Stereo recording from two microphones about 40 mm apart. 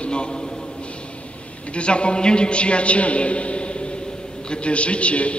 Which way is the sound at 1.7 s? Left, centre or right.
Left.